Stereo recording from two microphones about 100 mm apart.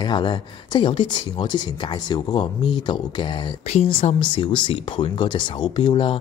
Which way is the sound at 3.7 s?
80° left.